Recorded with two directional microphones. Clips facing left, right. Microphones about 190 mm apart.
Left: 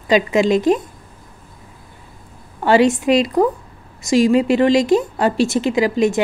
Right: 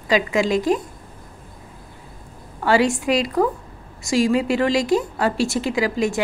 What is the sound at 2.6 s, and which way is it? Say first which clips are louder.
A woman's voice: left 4 dB; 20° left (ahead or behind).